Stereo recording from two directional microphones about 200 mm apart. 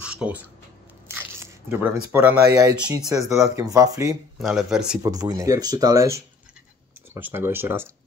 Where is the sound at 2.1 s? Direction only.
10° right (ahead or behind).